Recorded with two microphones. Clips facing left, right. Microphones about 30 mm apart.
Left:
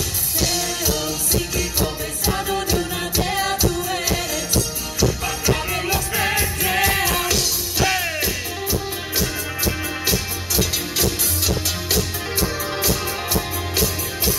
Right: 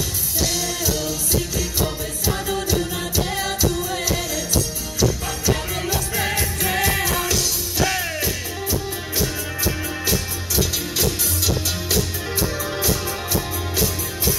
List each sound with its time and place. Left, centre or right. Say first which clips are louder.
0.5 s music: left 2 dB; left
2.8 s music: left 1 dB; centre
5.5 s music: left 1 dB; left
7.8 s music: left 2 dB; centre
12.8 s music: left 2 dB; left